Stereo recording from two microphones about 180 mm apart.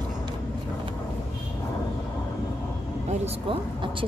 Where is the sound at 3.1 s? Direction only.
30° right (ahead or behind).